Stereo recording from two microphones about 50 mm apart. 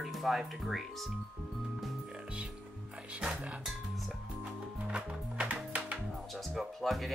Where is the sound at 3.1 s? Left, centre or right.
Right.